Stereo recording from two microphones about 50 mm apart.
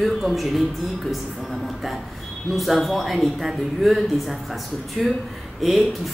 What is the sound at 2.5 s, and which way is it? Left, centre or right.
A woman's voice, centre.